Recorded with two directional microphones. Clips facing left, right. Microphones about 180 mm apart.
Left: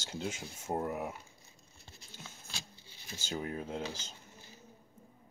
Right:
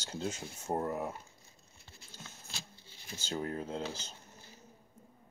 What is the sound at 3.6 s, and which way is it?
Speech, 30° right (ahead or behind).